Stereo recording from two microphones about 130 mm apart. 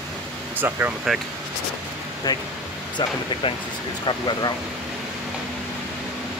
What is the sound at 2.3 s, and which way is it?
Speech, 30° left (ahead or behind).